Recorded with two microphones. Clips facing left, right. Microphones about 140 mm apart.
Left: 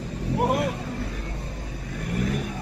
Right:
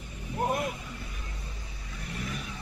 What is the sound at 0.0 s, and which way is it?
Vehicle, 80° left.